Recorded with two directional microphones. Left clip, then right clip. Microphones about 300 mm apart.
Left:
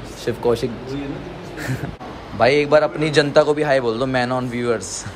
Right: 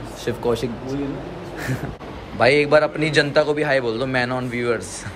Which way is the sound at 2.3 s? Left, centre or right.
Centre.